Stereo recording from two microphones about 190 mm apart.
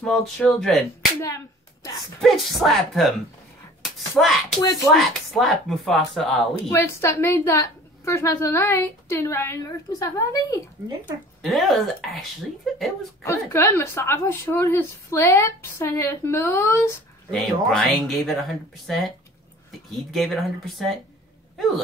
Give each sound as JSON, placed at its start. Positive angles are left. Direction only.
{"t": 0.0, "sound": "speech", "side_deg": 0}
{"t": 1.2, "sound": "a sound", "side_deg": 15}
{"t": 2.2, "sound": "speech", "side_deg": 0}
{"t": 6.7, "sound": "a woman's voice", "side_deg": 15}
{"t": 11.4, "sound": "speech", "side_deg": 0}
{"t": 13.2, "sound": "a woman's voice", "side_deg": 15}
{"t": 17.3, "sound": "speech", "side_deg": 5}